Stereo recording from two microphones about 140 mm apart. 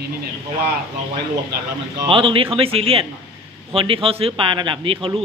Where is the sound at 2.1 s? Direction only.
40° right (ahead or behind).